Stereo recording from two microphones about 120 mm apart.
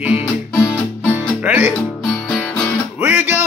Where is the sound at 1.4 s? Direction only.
10° right (ahead or behind).